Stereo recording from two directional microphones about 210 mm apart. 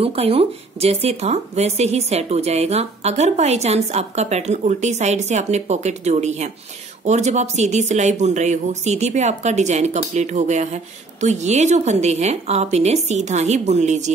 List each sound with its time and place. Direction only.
0.0 s speech: 25° right (ahead or behind)